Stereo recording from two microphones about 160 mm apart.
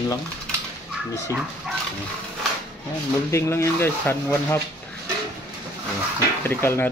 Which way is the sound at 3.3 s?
15° left (ahead or behind).